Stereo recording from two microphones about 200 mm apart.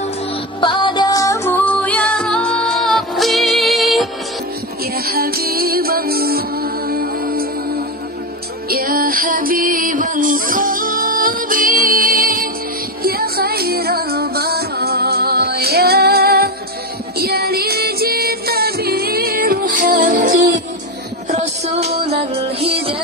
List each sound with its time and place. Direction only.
0.6 s music: 25° left (ahead or behind); by 4.1 s centre (ahead or behind)
4.9 s music: 50° right (ahead or behind)
8.6 s music: 45° right (ahead or behind)
21.3 s music: 35° right (ahead or behind)